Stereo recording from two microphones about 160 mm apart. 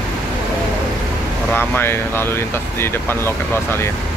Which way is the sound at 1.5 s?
10° left (ahead or behind).